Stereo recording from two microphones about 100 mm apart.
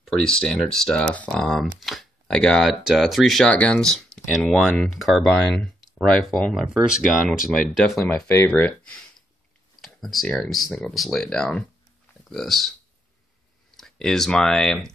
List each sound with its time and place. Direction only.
0.0 s speech: 5° left (ahead or behind)
8.1 s speech: 15° left (ahead or behind)
9.8 s computer keyboard: centre (ahead or behind)
10.2 s speech: 5° left (ahead or behind)
13.7 s speech: 5° left (ahead or behind)